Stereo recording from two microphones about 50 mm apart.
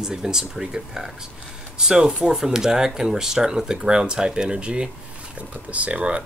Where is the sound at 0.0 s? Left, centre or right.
Centre.